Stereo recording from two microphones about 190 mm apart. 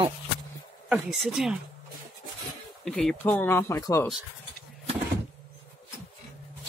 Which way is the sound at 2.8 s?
5° left (ahead or behind).